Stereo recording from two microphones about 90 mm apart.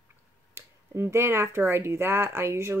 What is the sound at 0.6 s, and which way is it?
Speech, 30° right (ahead or behind).